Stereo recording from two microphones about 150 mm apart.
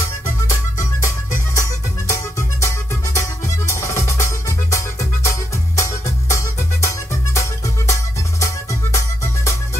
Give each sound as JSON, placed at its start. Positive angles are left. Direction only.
{"t": 0.5, "sound": "music", "side_deg": 20}